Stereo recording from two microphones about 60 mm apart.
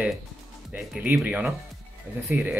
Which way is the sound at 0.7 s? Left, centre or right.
Centre.